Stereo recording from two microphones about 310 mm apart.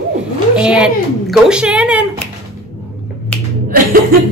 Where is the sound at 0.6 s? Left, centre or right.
Centre.